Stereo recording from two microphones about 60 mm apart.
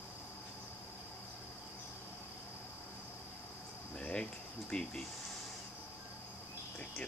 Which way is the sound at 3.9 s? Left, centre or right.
Centre.